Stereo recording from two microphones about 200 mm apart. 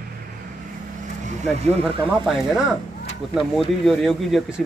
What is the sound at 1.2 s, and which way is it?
Vehicle, 35° right (ahead or behind).